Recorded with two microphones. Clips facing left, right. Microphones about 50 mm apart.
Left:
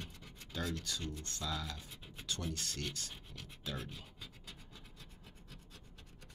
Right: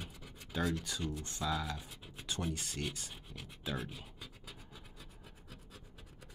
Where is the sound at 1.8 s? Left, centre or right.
Centre.